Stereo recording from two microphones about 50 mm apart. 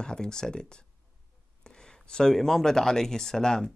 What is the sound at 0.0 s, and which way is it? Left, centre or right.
Speech, centre.